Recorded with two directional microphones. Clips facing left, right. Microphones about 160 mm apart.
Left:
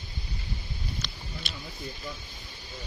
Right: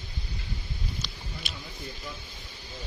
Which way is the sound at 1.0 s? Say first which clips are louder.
Even; 5° right (ahead or behind).